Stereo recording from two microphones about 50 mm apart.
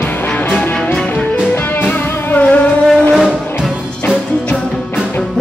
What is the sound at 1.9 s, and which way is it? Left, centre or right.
Music, left.